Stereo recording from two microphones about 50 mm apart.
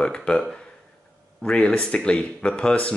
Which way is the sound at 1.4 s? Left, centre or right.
Centre.